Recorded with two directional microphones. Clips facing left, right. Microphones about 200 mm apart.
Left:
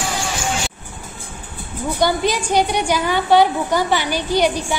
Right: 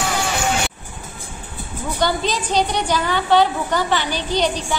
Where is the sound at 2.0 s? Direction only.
10° left (ahead or behind).